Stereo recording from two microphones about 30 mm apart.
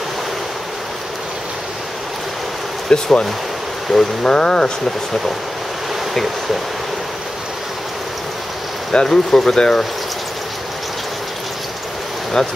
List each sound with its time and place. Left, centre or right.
2.9 s speech: left
8.9 s speech: centre
12.4 s speech: centre